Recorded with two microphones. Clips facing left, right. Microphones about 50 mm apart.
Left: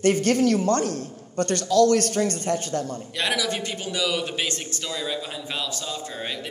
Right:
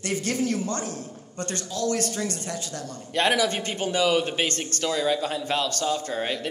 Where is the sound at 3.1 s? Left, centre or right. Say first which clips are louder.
Right 4 dB; right.